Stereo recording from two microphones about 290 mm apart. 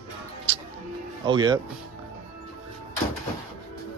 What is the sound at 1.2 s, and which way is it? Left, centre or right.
Speech, centre.